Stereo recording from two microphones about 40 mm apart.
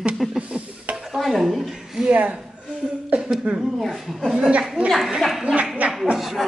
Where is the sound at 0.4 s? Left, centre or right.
Right.